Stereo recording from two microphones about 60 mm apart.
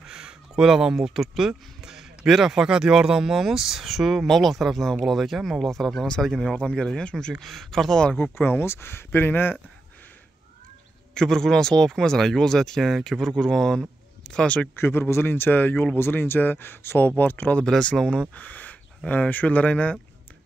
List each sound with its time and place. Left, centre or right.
0.0 s speech: centre
8.2 s speech: left
11.1 s speech: centre
14.8 s speech: left
17.6 s speech: centre
18.3 s speech: left